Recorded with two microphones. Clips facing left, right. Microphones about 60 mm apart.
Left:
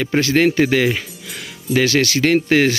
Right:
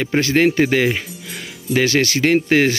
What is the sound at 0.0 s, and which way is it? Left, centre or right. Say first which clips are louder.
Speech: even; right.